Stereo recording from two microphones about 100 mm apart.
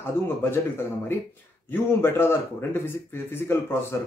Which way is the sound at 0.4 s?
20° left (ahead or behind).